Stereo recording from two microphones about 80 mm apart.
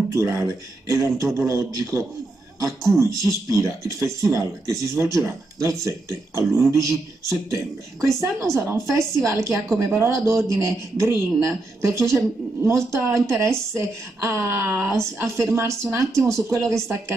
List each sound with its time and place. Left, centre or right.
0.1 s speech: right
16.3 s speech: centre